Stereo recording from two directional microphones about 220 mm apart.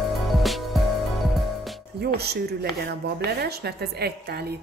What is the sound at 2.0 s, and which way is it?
A woman's voice, 45° right (ahead or behind).